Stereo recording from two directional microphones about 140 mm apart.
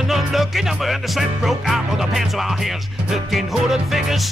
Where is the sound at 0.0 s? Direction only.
Centre (ahead or behind).